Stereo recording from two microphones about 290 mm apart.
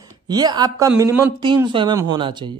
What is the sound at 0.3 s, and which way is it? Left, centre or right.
Speech, centre.